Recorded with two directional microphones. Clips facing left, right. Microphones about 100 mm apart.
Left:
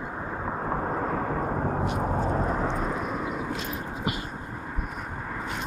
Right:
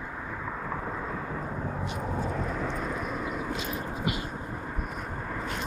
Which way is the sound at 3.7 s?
10° left (ahead or behind).